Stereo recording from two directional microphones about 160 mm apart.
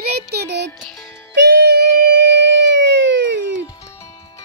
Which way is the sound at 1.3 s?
90° right.